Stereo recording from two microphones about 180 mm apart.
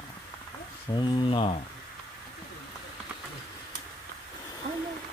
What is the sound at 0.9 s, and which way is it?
Speech, 25° left (ahead or behind).